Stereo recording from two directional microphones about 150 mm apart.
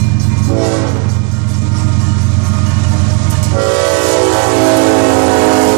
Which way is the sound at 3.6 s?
25° right (ahead or behind).